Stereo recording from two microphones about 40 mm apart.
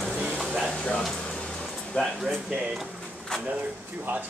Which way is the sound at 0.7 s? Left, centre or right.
Left.